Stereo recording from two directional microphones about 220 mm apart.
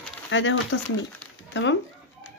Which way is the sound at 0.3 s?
60° left (ahead or behind).